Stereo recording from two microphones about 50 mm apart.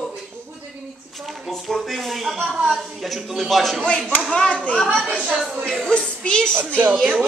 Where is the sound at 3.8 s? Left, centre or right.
Left.